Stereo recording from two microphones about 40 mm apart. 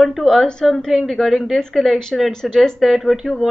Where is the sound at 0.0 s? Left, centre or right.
Centre.